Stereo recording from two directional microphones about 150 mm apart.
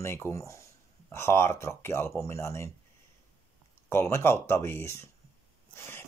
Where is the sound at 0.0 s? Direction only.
15° left (ahead or behind).